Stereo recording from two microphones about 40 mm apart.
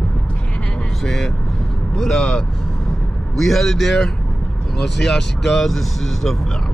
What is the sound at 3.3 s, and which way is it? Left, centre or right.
Speech, centre.